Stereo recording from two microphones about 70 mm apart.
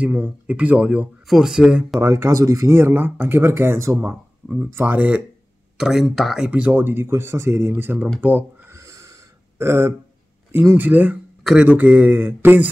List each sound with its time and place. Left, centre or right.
0.0 s speech: right
1.2 s speech: centre
2.0 s speech: right
4.7 s speech: right
5.8 s speech: centre
6.5 s speech: right
8.7 s a sound: right
10.5 s speech: right
11.4 s speech: centre
11.7 s speech: right